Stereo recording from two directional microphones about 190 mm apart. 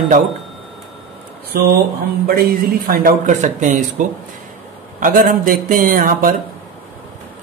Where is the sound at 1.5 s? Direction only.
50° right (ahead or behind).